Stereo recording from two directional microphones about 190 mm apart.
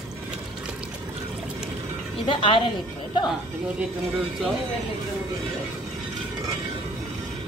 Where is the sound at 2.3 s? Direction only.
25° left (ahead or behind).